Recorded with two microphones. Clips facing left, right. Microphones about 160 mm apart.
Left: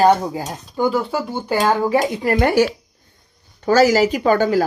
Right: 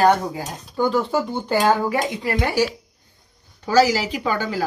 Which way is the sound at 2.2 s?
50° left (ahead or behind).